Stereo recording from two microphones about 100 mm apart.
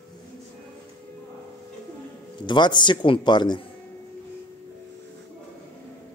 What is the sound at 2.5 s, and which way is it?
A man's voice, 50° left (ahead or behind).